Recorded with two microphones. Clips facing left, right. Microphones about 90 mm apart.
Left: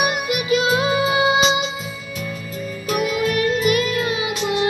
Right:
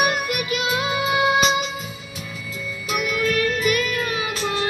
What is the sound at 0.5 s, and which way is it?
Music, 30° left (ahead or behind).